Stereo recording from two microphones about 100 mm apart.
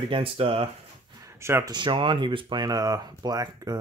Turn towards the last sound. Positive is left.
turn(degrees=-40)  # may be behind; listen again after turning